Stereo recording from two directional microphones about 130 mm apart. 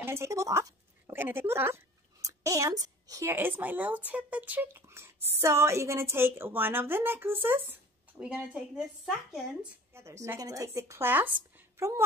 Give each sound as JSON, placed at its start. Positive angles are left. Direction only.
{"t": 0.0, "sound": "speech", "side_deg": -20}
{"t": 9.9, "sound": "speech", "side_deg": -20}